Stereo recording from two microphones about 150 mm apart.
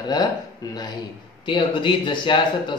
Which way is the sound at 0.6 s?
25° left (ahead or behind).